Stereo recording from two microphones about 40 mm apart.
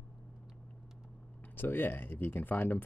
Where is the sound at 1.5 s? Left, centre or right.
Left.